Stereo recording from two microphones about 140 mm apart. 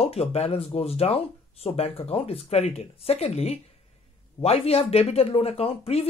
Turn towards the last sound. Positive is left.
turn(degrees=45)  # may be behind; listen again after turning